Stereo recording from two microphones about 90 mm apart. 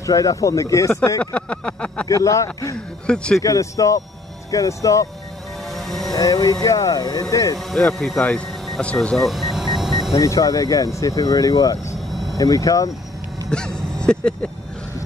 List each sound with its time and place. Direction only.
0.0 s speech: 40° left (ahead or behind)
1.2 s a sound: 10° left (ahead or behind)
2.0 s speech: 35° left (ahead or behind)
5.7 s music: centre (ahead or behind)
6.1 s speech: 40° left (ahead or behind)
7.5 s speech: 5° left (ahead or behind)
8.8 s vehicle: 10° left (ahead or behind)
10.2 s speech: 40° left (ahead or behind)
12.1 s vehicle: centre (ahead or behind)
12.4 s speech: 40° left (ahead or behind)
13.5 s a sound: 10° left (ahead or behind)